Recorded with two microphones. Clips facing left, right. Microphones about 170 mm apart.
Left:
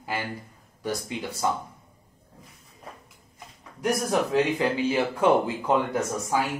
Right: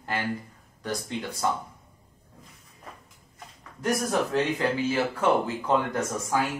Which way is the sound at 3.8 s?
10° left (ahead or behind).